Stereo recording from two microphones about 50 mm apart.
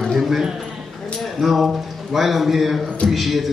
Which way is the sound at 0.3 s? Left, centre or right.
Centre.